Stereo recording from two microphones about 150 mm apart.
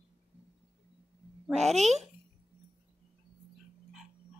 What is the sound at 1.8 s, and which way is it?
Speech, 50° right (ahead or behind).